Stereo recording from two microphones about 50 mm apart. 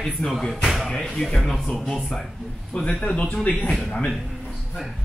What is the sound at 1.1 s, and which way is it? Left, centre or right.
Speech, centre.